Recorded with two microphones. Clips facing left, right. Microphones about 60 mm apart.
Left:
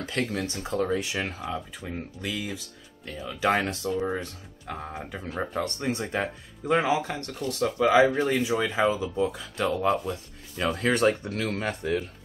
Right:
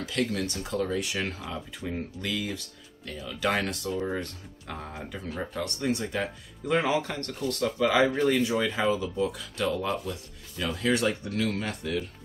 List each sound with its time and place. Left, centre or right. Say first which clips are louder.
0.0 s speech: even; left
1.8 s speech: right 1 dB; centre
3.2 s speech: left 3 dB; left
4.1 s speech: left 1 dB; centre
5.5 s speech: right 1 dB; left
6.7 s speech: left 2 dB; centre
10.6 s speech: left 3 dB; left